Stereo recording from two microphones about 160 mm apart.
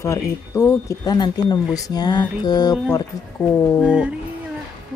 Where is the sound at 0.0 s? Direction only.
20° left (ahead or behind).